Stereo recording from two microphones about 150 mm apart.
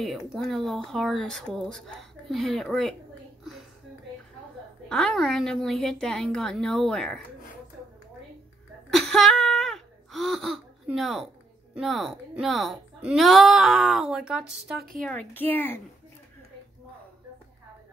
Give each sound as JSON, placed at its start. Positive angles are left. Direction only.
{"t": 0.3, "sound": "speech", "side_deg": 0}
{"t": 4.8, "sound": "speech", "side_deg": 5}
{"t": 8.9, "sound": "a sound", "side_deg": 0}
{"t": 11.0, "sound": "speech", "side_deg": 0}
{"t": 15.0, "sound": "speech", "side_deg": 10}